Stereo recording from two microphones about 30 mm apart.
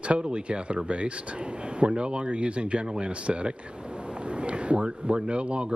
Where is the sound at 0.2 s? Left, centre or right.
Right.